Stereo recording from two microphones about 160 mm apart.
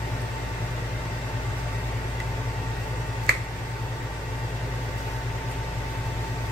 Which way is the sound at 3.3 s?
80° right.